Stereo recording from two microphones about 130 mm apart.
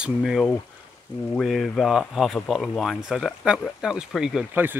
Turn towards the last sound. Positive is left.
turn(degrees=-15)  # may be behind; listen again after turning